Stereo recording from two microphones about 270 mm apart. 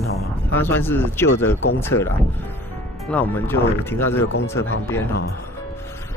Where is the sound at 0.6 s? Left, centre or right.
Centre.